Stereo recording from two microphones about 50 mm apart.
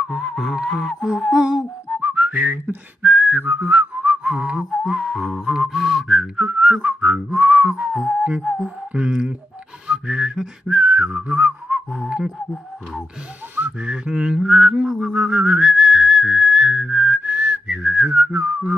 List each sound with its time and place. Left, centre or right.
0.0 s music: centre
2.0 s whistling: right
4.6 s music: centre
6.0 s music: centre
6.5 s whistling: right
9.8 s music: centre
10.8 s whistling: right
13.8 s whistling: centre